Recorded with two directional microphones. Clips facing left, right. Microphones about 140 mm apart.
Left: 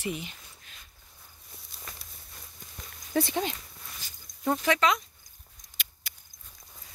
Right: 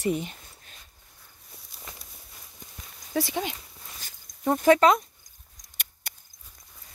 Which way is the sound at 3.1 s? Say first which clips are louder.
Even; 10° right (ahead or behind).